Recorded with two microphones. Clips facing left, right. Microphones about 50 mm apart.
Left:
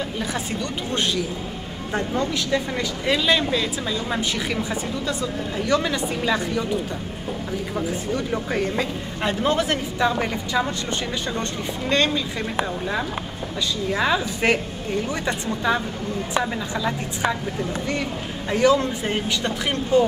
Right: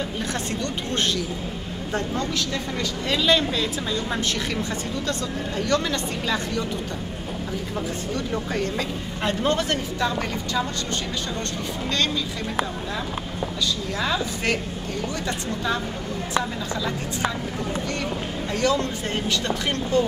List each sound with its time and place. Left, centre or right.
0.3 s a woman's voice: centre
8.1 s a woman's voice: centre
9.9 s a woman's voice: centre
13.9 s a woman's voice: centre
18.5 s a woman's voice: centre